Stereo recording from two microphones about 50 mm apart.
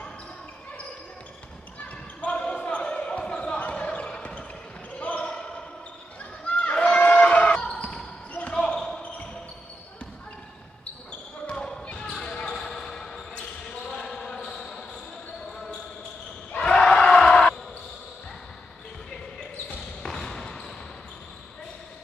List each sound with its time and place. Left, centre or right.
2.2 s basketball bounce: left
6.4 s a sound: left
7.5 s basketball bounce: centre
8.5 s basketball bounce: centre
11.5 s basketball bounce: centre
11.8 s basketball bounce: left
16.5 s a sound: left
20.1 s basketball bounce: centre